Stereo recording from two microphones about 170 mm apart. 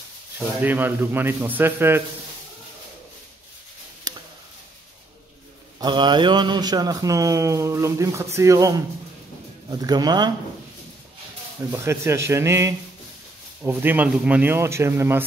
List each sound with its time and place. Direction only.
0.6 s speech: 10° right (ahead or behind)
4.1 s a sound: 25° right (ahead or behind)
5.8 s speech: 25° right (ahead or behind)
11.7 s speech: 15° right (ahead or behind)